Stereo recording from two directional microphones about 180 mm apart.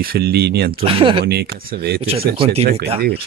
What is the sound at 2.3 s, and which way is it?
Speech, 35° right (ahead or behind).